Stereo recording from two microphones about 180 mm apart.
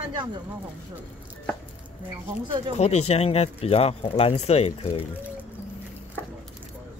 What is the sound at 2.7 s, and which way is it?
Speech, 35° left (ahead or behind).